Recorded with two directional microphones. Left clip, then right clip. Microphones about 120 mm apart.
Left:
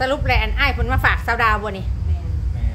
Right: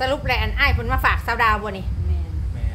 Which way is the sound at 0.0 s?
10° left (ahead or behind).